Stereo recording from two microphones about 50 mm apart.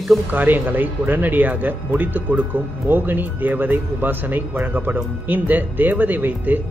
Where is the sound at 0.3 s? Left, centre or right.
Right.